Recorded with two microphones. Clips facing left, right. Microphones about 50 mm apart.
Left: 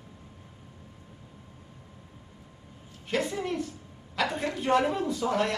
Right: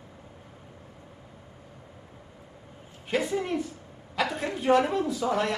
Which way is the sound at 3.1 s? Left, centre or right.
Centre.